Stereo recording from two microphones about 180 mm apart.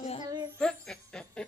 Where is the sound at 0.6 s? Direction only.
5° left (ahead or behind).